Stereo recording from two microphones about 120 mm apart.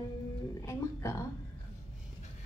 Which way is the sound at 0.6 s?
25° left (ahead or behind).